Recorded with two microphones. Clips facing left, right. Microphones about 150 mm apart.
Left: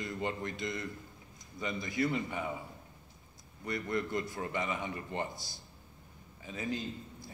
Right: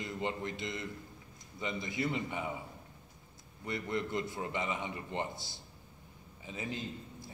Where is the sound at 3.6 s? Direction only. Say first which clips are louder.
Left 1 dB; 25° right (ahead or behind).